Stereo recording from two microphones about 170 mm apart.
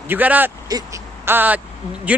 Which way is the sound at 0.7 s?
20° right (ahead or behind).